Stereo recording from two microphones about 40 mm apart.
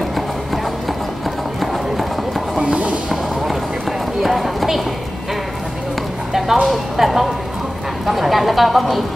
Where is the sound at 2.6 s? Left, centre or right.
Right.